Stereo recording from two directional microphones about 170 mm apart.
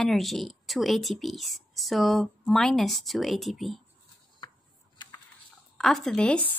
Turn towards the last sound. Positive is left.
turn(degrees=5)  # may be behind; listen again after turning